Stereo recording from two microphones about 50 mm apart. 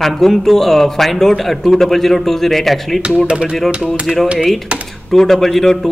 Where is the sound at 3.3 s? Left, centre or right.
Centre.